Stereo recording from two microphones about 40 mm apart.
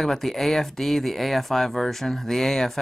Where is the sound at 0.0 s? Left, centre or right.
Centre.